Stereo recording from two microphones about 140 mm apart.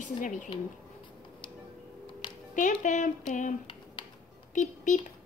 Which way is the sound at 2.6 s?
60° left (ahead or behind).